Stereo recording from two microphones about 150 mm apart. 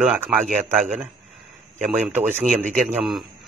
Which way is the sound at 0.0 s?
10° right (ahead or behind).